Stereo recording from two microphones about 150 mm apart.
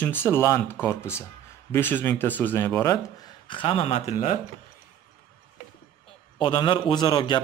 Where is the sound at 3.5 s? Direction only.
35° left (ahead or behind).